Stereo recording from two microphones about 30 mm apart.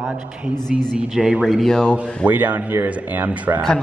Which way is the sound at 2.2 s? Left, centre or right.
Right.